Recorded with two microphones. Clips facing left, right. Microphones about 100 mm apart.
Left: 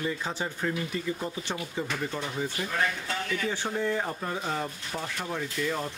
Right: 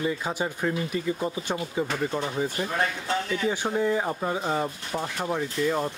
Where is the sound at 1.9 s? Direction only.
30° right (ahead or behind).